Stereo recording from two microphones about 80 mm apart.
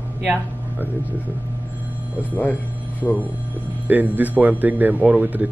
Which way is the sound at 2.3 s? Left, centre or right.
Centre.